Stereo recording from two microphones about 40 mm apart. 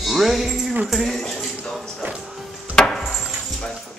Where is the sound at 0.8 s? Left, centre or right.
Centre.